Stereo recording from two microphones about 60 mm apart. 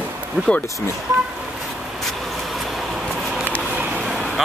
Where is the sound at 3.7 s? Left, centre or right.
Right.